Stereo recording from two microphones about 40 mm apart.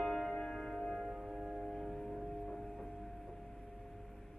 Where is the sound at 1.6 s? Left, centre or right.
Centre.